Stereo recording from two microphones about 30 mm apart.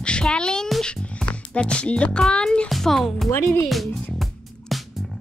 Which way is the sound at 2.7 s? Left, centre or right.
Centre.